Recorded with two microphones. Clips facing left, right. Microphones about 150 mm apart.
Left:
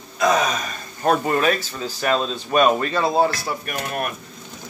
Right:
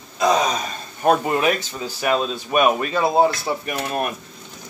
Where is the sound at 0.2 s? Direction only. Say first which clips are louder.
Right 1 dB; 30° right (ahead or behind).